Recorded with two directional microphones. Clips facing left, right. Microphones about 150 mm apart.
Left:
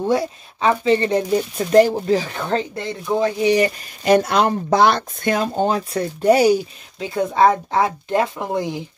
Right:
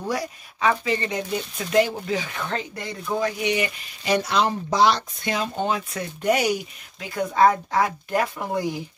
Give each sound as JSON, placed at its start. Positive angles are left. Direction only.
{"t": 0.0, "sound": "speech", "side_deg": 25}
{"t": 5.5, "sound": "speech", "side_deg": 40}